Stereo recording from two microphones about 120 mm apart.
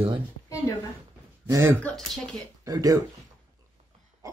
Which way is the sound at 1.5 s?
25° right (ahead or behind).